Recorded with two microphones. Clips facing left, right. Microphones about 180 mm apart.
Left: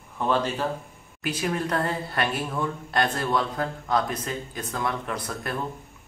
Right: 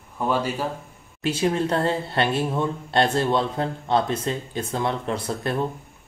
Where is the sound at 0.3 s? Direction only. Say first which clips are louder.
Even; 10° right (ahead or behind).